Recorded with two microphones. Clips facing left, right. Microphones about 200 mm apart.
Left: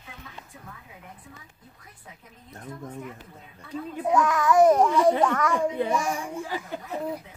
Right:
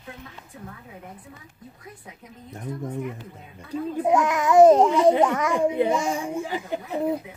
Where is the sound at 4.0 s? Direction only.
25° right (ahead or behind).